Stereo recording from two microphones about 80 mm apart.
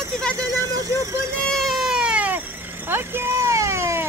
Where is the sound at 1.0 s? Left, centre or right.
Right.